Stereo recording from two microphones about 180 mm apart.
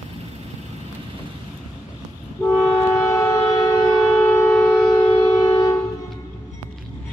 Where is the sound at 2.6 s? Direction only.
15° left (ahead or behind).